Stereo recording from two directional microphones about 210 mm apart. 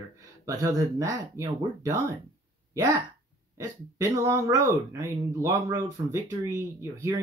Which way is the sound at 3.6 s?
15° right (ahead or behind).